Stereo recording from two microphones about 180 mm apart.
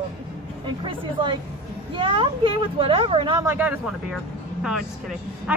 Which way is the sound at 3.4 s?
10° right (ahead or behind).